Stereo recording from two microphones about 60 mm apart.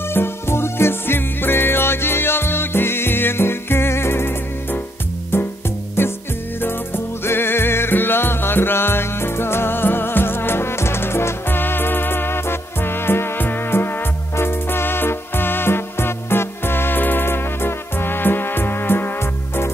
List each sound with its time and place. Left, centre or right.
0.1 s music: left